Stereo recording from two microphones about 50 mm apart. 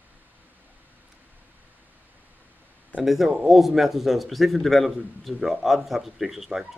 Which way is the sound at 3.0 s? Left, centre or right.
Centre.